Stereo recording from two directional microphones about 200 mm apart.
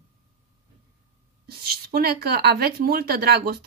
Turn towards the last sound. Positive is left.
turn(degrees=-50)  # may be behind; listen again after turning